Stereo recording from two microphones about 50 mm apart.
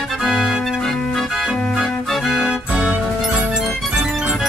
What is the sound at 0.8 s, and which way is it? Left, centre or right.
Organ, centre.